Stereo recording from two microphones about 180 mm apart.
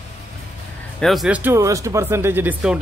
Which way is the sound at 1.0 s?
Centre (ahead or behind).